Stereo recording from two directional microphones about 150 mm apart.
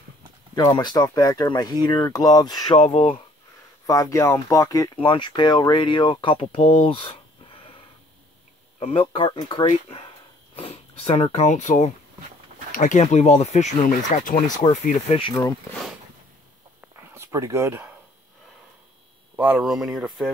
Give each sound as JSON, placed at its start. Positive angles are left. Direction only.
{"t": 0.6, "sound": "speech", "side_deg": 30}
{"t": 2.8, "sound": "speech", "side_deg": 40}
{"t": 3.8, "sound": "speech", "side_deg": 25}
{"t": 4.9, "sound": "speech", "side_deg": 30}
{"t": 8.7, "sound": "speech", "side_deg": 40}
{"t": 16.8, "sound": "a sound", "side_deg": -15}
{"t": 19.3, "sound": "speech", "side_deg": -15}
{"t": 19.6, "sound": "speech", "side_deg": -5}